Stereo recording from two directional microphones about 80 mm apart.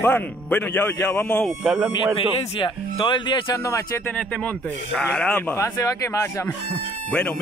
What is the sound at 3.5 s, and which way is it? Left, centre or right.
Speech, left.